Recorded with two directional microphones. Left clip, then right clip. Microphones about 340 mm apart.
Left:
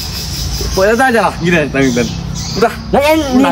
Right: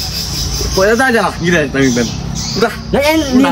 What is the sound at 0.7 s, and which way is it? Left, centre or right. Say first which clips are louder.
Speech: left 1 dB; centre.